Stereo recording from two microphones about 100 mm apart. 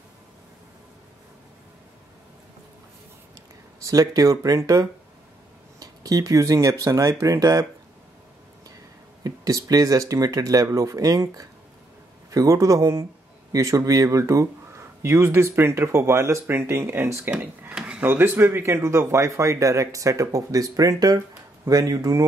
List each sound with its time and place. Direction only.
3.8 s speech: 35° right (ahead or behind)
9.2 s speech: 35° right (ahead or behind)
17.3 s speech: 10° right (ahead or behind)
18.0 s speech: 20° right (ahead or behind); by 22.2 s 35° right (ahead or behind)